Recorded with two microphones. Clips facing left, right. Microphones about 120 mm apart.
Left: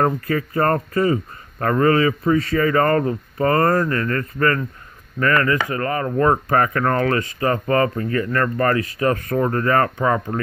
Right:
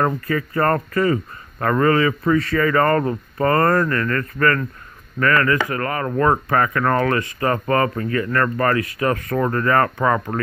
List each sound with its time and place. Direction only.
0.9 s a man's voice: 25° left (ahead or behind)
2.9 s speech: 35° right (ahead or behind)
3.4 s a man's voice: 25° left (ahead or behind)
7.3 s speech: 35° right (ahead or behind)
8.0 s a man's voice: 35° left (ahead or behind)